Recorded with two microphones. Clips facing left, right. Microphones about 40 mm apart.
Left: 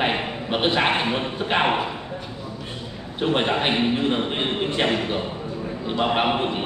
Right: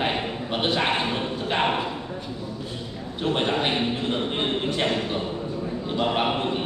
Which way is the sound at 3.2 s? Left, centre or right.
Left.